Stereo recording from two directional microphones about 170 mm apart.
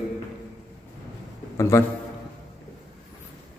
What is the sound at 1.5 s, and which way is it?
Speech, 15° left (ahead or behind).